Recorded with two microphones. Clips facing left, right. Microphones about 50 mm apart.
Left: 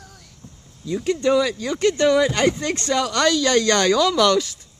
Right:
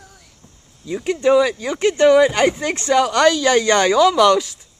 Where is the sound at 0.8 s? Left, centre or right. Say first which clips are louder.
Right 3 dB; centre.